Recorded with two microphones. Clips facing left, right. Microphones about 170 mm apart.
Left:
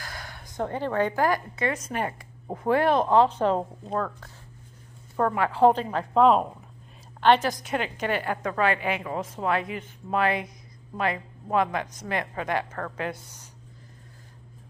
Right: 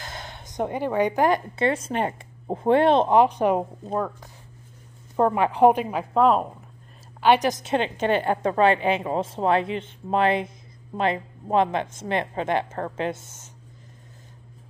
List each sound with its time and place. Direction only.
0.0 s a woman's voice: 25° right (ahead or behind); by 6.5 s centre (ahead or behind)
7.2 s a woman's voice: 15° right (ahead or behind)